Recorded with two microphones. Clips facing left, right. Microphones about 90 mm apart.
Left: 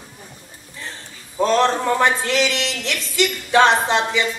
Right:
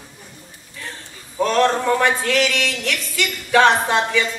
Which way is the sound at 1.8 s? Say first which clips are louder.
Even; 25° left (ahead or behind).